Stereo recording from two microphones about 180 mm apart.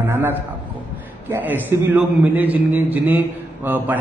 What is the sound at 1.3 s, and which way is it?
A man's voice, 10° right (ahead or behind).